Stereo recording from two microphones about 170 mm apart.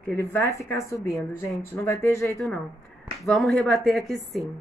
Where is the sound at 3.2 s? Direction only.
Centre (ahead or behind).